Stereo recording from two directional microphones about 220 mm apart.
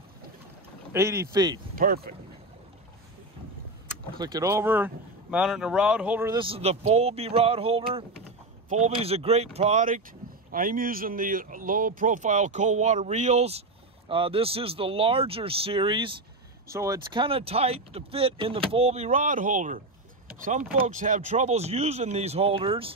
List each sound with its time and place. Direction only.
0.9 s speech: 10° right (ahead or behind)
1.8 s speech: 40° right (ahead or behind)
4.2 s speech: 15° right (ahead or behind)
6.3 s speech: 25° right (ahead or behind)